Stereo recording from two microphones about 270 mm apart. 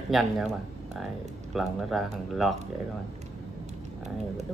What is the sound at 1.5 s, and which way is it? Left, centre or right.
Speech, centre.